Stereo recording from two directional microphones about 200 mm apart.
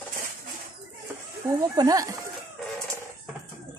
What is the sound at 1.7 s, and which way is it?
Speech, 20° right (ahead or behind).